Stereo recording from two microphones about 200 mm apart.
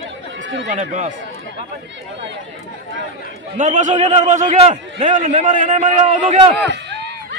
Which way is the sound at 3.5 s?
40° right (ahead or behind).